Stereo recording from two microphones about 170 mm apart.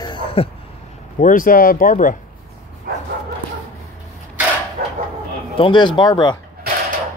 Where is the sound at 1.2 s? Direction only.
50° left (ahead or behind).